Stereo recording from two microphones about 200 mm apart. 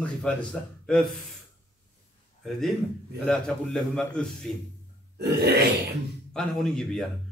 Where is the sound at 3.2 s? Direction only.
5° left (ahead or behind).